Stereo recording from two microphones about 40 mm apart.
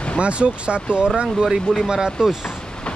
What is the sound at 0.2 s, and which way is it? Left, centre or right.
Speech, right.